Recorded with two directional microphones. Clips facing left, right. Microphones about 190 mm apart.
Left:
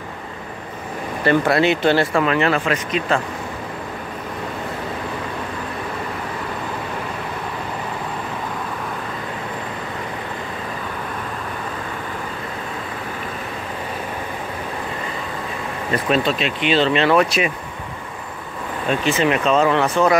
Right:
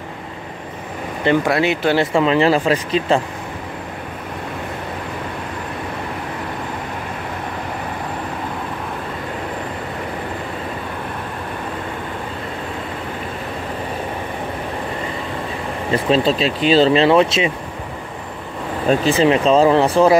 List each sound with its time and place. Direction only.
1.2 s speech: 10° right (ahead or behind)
2.0 s speech: 25° right (ahead or behind)
15.9 s speech: 30° right (ahead or behind)
18.9 s speech: 35° right (ahead or behind)